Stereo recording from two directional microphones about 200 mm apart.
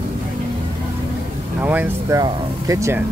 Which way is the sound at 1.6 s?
10° right (ahead or behind).